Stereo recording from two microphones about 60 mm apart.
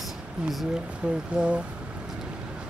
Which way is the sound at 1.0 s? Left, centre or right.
Centre.